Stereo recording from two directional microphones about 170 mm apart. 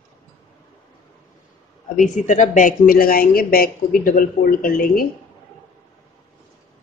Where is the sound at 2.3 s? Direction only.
50° left (ahead or behind).